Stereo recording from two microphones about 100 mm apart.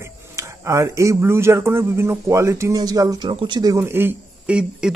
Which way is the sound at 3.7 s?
25° right (ahead or behind).